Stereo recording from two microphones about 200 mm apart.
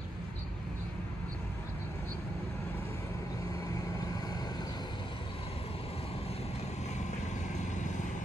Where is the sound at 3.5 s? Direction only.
15° left (ahead or behind).